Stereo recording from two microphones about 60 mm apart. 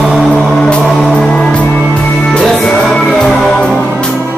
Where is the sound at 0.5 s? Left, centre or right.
Centre.